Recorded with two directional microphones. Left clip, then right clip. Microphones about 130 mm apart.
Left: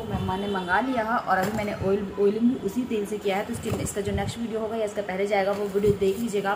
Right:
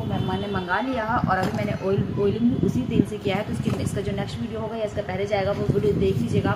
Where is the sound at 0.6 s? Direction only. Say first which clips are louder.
Left 1 dB; centre (ahead or behind).